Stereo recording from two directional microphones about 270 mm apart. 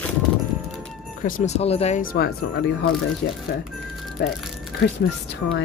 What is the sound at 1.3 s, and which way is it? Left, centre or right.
Speech, left.